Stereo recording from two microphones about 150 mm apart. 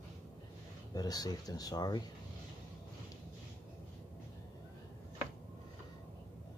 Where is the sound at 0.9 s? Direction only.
25° left (ahead or behind).